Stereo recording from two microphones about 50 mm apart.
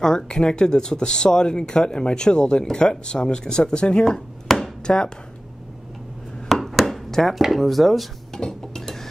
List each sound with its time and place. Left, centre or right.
0.0 s speech: centre
4.5 s a sound: centre
4.8 s speech: centre
6.5 s chopping: centre
7.4 s speech: centre
8.4 s cutlery: centre